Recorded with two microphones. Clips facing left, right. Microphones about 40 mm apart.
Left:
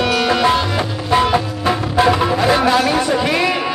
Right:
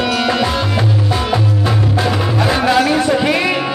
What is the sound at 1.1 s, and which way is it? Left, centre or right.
Music, left.